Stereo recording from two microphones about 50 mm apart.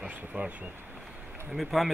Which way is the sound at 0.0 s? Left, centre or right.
Right.